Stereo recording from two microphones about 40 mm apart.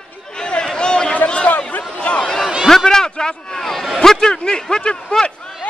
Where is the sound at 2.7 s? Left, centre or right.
Centre.